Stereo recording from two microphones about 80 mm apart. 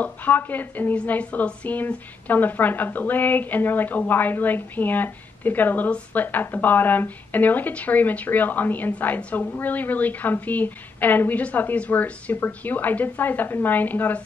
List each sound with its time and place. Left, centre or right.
0.0 s a woman's voice: left